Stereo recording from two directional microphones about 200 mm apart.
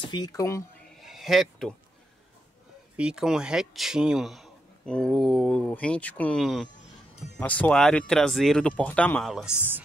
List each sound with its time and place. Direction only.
0.1 s speech: 20° left (ahead or behind)
0.9 s a sound: centre (ahead or behind)
3.0 s speech: 5° right (ahead or behind)